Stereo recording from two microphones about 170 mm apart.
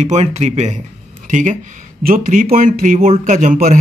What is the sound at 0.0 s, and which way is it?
Speech, 40° right (ahead or behind).